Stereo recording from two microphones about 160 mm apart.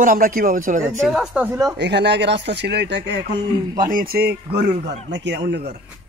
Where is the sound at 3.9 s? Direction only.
65° right (ahead or behind); by 5.6 s 90° right.